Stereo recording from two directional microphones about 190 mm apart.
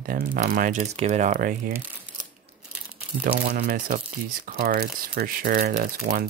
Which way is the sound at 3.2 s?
50° right (ahead or behind).